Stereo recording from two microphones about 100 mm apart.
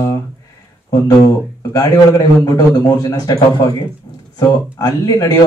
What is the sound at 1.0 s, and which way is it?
Speech, 40° left (ahead or behind).